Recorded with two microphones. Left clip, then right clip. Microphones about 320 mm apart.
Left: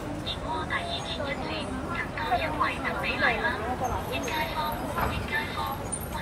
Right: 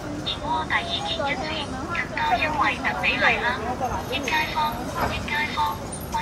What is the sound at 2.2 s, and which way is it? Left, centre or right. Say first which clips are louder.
Speech: right 5 dB; centre.